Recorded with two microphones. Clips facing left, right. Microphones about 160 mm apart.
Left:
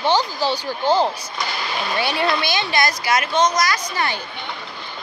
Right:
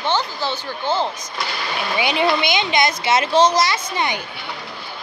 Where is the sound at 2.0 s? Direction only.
15° right (ahead or behind).